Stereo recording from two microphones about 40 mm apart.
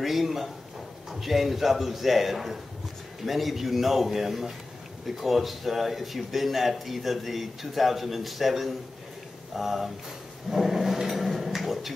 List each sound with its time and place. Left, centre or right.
0.0 s speech: centre